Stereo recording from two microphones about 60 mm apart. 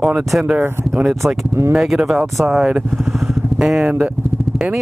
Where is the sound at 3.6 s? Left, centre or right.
Centre.